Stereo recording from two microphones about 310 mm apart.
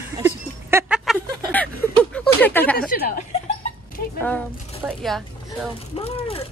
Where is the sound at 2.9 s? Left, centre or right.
Left.